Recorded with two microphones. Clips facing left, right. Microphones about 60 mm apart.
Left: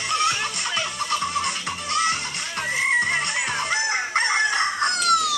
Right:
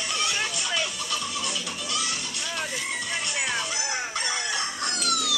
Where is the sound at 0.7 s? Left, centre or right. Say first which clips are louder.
Left 5 dB; left.